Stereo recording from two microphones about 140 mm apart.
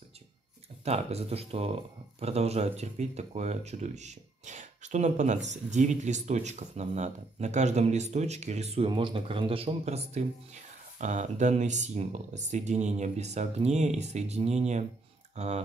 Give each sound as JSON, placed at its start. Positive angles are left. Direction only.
{"t": 0.8, "sound": "speech", "side_deg": -50}